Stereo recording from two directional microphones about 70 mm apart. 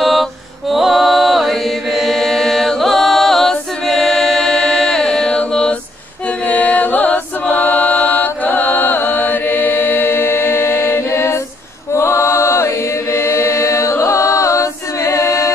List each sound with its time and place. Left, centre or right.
0.0 s music: centre
6.2 s a capella: left
11.9 s chant: left